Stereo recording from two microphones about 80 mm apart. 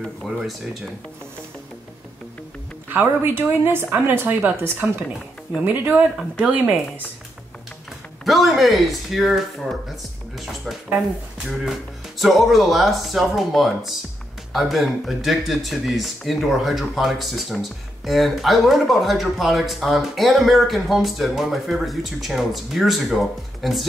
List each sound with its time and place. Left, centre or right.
0.0 s speech: centre
2.9 s speech: right
8.3 s speech: centre
12.2 s speech: centre